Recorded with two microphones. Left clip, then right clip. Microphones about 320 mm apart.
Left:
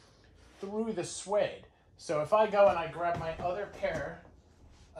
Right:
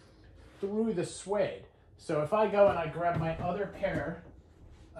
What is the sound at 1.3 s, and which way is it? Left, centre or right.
Speech, left.